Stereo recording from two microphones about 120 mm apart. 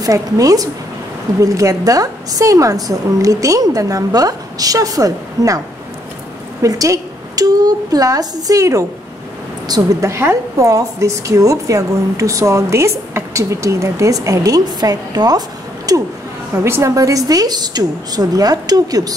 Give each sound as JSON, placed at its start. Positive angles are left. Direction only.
{"t": 0.0, "sound": "a woman's voice", "side_deg": -30}
{"t": 6.6, "sound": "a woman's voice", "side_deg": -30}